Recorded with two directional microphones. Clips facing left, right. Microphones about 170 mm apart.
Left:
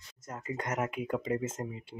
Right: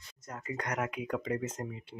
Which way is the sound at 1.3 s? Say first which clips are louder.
Left 2 dB; 25° left (ahead or behind).